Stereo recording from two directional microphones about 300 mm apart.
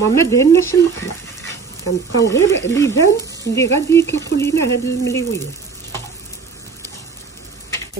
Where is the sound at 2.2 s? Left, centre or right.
Centre.